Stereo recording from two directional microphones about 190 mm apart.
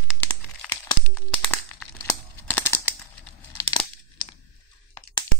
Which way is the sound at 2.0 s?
10° left (ahead or behind).